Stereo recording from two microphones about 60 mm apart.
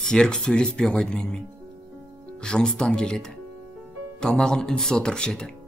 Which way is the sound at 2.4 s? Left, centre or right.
Centre.